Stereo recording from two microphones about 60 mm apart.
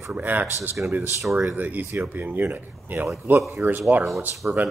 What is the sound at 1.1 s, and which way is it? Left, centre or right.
Speech, right.